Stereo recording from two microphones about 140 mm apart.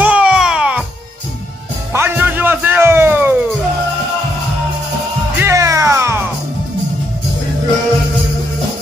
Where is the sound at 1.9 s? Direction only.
15° right (ahead or behind).